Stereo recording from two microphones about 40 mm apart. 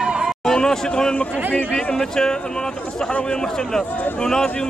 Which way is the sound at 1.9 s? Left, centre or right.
Centre.